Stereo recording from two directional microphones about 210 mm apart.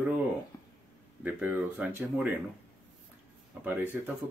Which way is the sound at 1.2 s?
10° right (ahead or behind).